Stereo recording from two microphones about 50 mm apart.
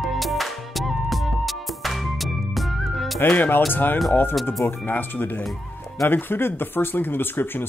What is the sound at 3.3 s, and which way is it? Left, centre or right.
Speech, left.